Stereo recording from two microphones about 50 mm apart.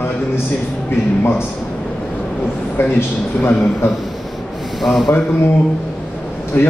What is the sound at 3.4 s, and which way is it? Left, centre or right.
Speech, left.